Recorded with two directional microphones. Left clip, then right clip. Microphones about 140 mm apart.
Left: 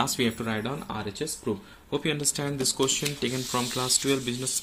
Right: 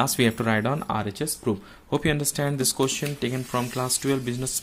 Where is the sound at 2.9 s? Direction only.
30° right (ahead or behind).